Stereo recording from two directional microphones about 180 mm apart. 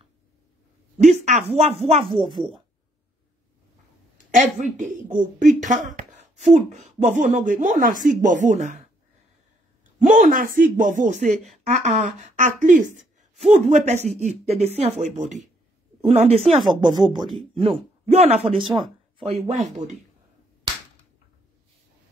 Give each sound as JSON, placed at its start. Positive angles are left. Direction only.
{"t": 0.9, "sound": "speech", "side_deg": -40}
{"t": 2.0, "sound": "a woman's voice", "side_deg": 0}
{"t": 4.3, "sound": "speech", "side_deg": -45}
{"t": 9.9, "sound": "speech", "side_deg": -45}
{"t": 16.8, "sound": "speech", "side_deg": -25}
{"t": 18.6, "sound": "a woman's voice", "side_deg": 0}
{"t": 19.1, "sound": "speech", "side_deg": -35}